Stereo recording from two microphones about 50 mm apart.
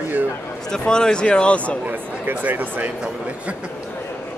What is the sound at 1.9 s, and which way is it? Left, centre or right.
Speech, right.